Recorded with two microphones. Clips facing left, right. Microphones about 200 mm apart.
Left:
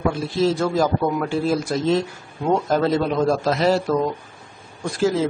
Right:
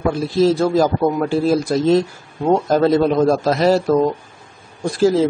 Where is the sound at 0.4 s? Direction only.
35° right (ahead or behind).